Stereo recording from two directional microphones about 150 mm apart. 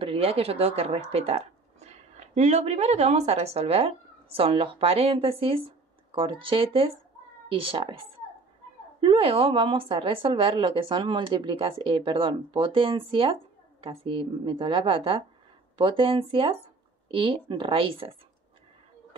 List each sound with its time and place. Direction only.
0.0 s a woman's voice: 40° right (ahead or behind)
9.0 s speech: 35° right (ahead or behind)